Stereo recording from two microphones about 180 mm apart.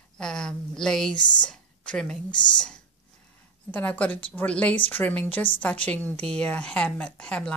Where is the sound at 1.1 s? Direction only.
25° left (ahead or behind).